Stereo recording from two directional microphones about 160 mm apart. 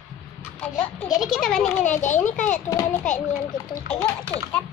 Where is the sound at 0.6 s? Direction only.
10° left (ahead or behind).